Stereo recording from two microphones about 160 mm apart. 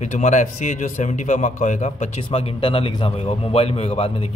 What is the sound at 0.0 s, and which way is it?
A man's voice, 50° left (ahead or behind).